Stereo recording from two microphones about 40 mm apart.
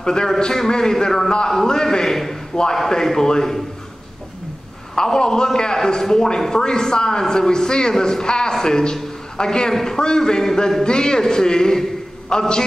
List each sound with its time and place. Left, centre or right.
0.0 s a man's voice: centre
4.9 s a man's voice: centre